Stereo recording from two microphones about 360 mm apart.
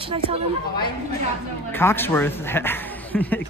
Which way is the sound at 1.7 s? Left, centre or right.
Centre.